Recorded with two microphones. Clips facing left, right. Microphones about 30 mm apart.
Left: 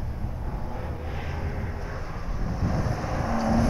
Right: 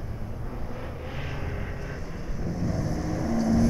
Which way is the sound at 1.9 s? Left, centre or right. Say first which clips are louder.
Left 1 dB; centre.